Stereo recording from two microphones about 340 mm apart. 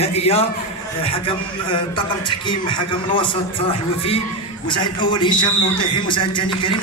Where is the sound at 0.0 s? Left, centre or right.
Centre.